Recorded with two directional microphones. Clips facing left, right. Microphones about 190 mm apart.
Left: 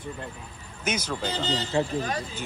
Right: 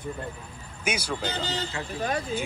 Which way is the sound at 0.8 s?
10° right (ahead or behind).